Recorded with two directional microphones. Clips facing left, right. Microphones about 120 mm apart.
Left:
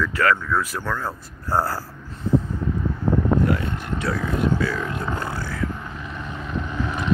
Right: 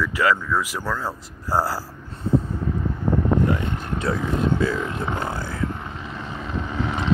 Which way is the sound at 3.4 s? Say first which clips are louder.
Even; 20° right (ahead or behind).